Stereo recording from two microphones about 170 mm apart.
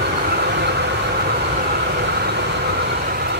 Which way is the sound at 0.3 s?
75° right (ahead or behind).